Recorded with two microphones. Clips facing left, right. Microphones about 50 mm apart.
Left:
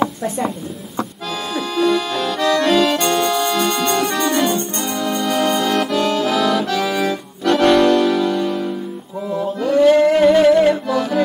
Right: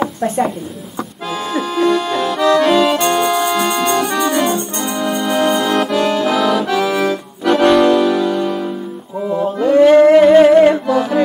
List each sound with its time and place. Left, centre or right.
1.5 s accordion: centre
3.5 s music: centre
4.9 s accordion: centre
7.4 s music: centre
9.3 s a sound: centre
9.8 s singing: right
10.1 s humming: right
10.7 s music: centre